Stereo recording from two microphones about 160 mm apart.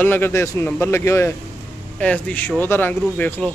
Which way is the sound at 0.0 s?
15° left (ahead or behind).